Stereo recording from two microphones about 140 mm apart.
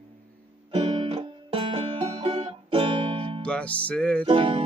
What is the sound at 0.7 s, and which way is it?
Banjo, 40° right (ahead or behind).